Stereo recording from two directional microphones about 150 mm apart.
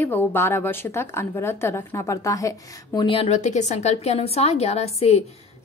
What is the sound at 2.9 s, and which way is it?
A woman's voice, 35° left (ahead or behind).